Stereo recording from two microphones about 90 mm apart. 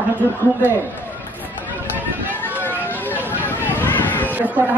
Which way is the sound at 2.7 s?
20° left (ahead or behind).